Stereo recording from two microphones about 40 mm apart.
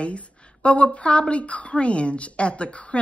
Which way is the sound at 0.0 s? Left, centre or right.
Left.